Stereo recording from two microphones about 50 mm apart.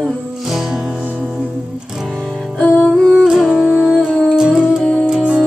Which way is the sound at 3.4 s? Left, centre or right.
Centre.